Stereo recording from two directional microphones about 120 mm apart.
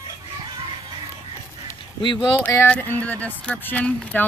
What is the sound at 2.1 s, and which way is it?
Speech, 10° left (ahead or behind).